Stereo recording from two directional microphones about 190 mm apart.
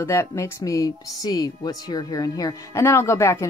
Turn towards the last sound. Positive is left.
turn(degrees=15)  # may be behind; listen again after turning